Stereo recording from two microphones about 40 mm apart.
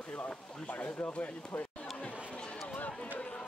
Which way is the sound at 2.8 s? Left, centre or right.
Left.